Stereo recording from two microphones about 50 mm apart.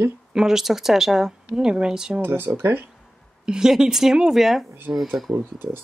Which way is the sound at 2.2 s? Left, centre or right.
Right.